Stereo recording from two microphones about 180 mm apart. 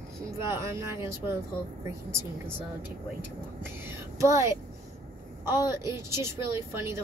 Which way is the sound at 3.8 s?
15° right (ahead or behind).